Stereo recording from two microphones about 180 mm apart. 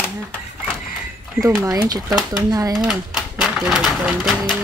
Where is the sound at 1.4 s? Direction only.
20° right (ahead or behind).